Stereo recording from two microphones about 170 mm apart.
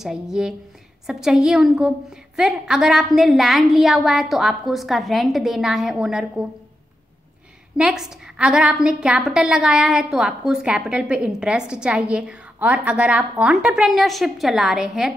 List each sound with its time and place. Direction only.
0.0 s a woman's voice: 5° right (ahead or behind)
7.7 s a woman's voice: 5° right (ahead or behind)